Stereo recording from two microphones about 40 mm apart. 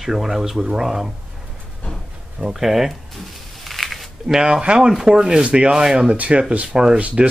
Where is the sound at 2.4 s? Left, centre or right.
Centre.